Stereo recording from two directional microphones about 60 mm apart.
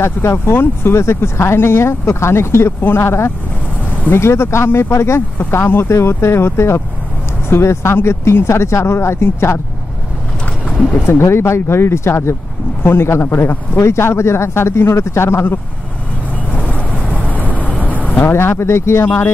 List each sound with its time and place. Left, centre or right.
0.0 s speech: left
11.1 s speech: left
16.5 s vehicle: left
17.8 s speech: left